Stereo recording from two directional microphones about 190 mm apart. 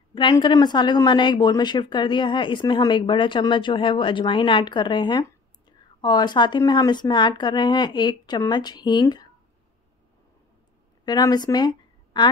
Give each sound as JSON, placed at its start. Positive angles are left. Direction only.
{"t": 0.1, "sound": "a woman's voice", "side_deg": 25}
{"t": 11.1, "sound": "a woman's voice", "side_deg": 20}